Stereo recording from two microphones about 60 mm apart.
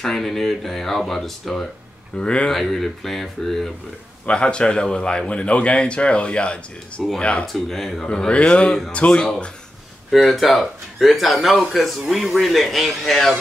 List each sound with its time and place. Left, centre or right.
0.0 s speech: centre
2.1 s speech: centre
2.5 s speech: centre
4.3 s speech: centre
7.4 s speech: centre
8.1 s speech: centre
10.1 s speech: centre